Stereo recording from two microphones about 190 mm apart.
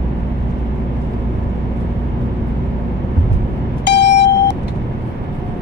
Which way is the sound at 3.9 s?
65° left (ahead or behind).